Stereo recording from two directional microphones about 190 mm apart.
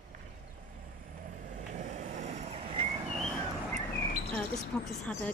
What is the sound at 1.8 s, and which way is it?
Vehicle, 40° right (ahead or behind).